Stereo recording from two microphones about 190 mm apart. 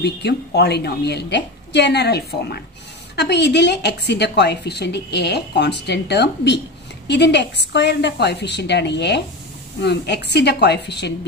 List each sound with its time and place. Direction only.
0.0 s a woman's voice: 60° left (ahead or behind)